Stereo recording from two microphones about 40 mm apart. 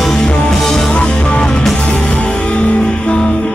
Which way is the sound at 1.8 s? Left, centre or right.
Left.